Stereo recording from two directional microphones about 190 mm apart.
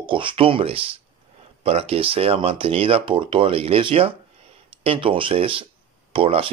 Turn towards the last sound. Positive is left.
turn(degrees=-30)  # may be behind; listen again after turning